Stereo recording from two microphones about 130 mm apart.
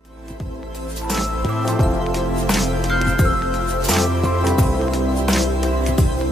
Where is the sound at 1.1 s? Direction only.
Centre (ahead or behind).